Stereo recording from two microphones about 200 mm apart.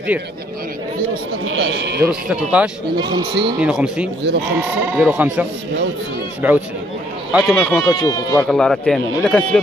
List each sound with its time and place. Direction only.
1.4 s speech: 75° right (ahead or behind); by 2.0 s 60° right (ahead or behind)
2.2 s speech: 5° right (ahead or behind)
3.0 s a man's voice: 20° right (ahead or behind)
3.6 s speech: 5° right (ahead or behind)
7.3 s speech: centre (ahead or behind)
8.0 s speech: 20° left (ahead or behind)
8.4 s speech: 5° left (ahead or behind)